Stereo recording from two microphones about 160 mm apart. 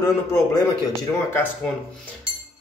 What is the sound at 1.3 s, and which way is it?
Speech, 10° left (ahead or behind).